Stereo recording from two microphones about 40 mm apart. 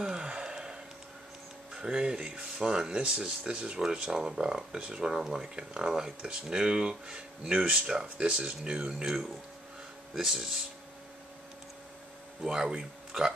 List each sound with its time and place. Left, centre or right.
0.0 s a sound: right
1.7 s speech: right
10.1 s speech: centre
12.4 s speech: centre